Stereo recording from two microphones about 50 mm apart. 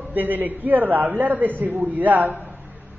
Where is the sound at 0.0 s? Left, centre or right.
Right.